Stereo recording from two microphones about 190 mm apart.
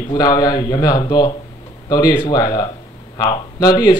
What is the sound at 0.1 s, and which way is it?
A man's voice, 20° left (ahead or behind).